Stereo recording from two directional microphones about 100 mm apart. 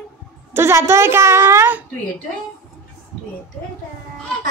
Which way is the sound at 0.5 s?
25° right (ahead or behind).